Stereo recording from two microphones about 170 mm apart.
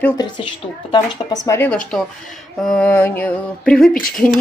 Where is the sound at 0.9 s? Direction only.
25° left (ahead or behind).